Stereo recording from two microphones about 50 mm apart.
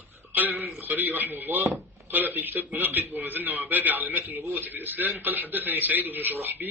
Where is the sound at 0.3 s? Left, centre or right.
Right.